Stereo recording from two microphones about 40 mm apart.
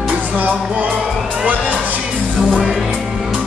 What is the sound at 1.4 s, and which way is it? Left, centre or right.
Music, right.